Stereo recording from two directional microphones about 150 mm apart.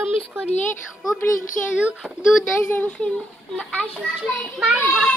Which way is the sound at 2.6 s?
15° left (ahead or behind).